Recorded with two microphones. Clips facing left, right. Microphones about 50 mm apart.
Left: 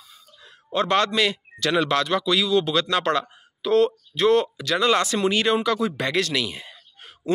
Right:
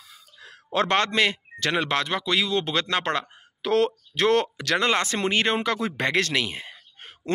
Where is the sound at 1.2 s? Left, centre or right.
Right.